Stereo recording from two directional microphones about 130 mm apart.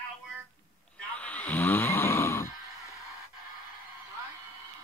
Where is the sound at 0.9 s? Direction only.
10° left (ahead or behind).